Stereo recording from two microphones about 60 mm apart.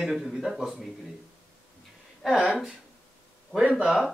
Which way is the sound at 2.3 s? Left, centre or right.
Centre.